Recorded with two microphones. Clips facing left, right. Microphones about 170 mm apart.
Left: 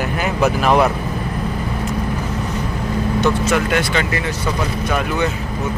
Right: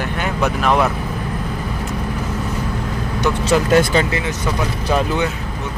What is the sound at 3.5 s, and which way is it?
Speech, 35° right (ahead or behind).